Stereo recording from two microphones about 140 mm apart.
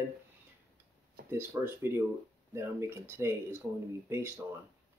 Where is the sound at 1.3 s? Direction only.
15° right (ahead or behind).